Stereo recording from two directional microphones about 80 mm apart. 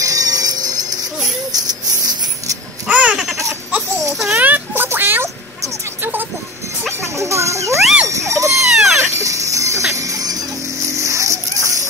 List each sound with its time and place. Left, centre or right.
0.0 s music: right
2.9 s baby cry: centre
4.4 s a sound: right
7.2 s children playing: right
7.8 s a sound: centre
8.1 s wail: right
8.7 s cat: centre
9.0 s music: right